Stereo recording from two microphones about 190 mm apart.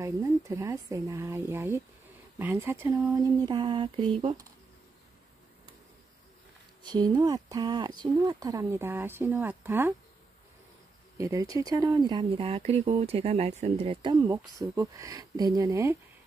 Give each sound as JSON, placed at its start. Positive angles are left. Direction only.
{"t": 0.0, "sound": "speech", "side_deg": -15}
{"t": 6.8, "sound": "speech", "side_deg": -25}
{"t": 11.1, "sound": "speech", "side_deg": -15}